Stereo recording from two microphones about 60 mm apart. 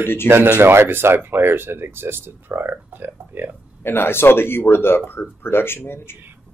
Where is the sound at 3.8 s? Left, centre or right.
Left.